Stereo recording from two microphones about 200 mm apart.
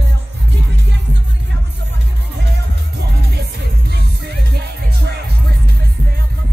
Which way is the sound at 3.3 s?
55° right (ahead or behind).